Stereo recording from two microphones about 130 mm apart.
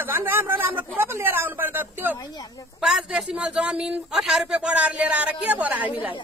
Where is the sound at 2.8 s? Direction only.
5° right (ahead or behind).